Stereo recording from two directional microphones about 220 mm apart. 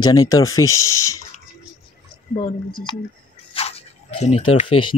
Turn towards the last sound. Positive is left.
turn(degrees=25)  # may be behind; listen again after turning